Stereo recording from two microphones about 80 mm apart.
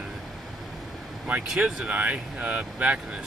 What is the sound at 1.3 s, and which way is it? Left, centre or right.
Speech, centre.